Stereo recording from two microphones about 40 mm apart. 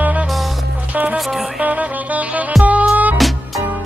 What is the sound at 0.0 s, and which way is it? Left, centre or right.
Music, right.